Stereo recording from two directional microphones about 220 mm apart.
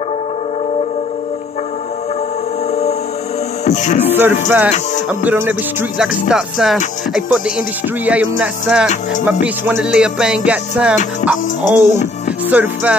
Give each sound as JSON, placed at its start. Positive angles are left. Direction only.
{"t": 2.7, "sound": "music", "side_deg": 30}
{"t": 4.5, "sound": "music", "side_deg": -5}